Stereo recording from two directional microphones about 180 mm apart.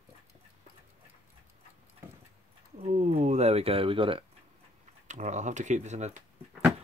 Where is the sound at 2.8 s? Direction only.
35° right (ahead or behind).